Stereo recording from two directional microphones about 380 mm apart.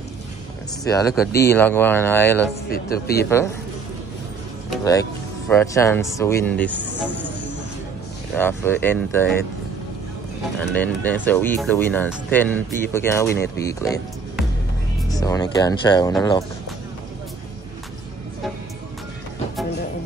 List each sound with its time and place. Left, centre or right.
0.8 s speech: centre
2.7 s speech: left
4.6 s speech: centre
8.4 s speech: centre
10.7 s speech: centre